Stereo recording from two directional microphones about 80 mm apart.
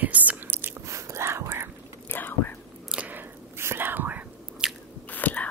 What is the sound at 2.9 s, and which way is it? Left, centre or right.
Whispering, centre.